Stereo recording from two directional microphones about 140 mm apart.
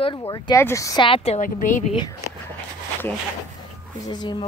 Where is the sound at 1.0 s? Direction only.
45° left (ahead or behind).